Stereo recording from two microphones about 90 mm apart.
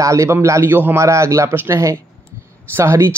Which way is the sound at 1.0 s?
35° right (ahead or behind).